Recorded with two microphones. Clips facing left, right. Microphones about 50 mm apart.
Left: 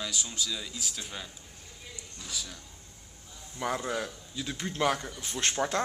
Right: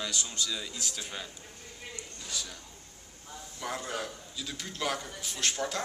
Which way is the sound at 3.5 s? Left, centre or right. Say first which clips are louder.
Left 4 dB; left.